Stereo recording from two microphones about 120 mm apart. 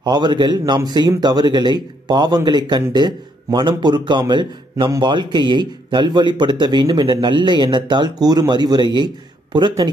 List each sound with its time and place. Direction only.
0.0 s a man's voice: 35° right (ahead or behind)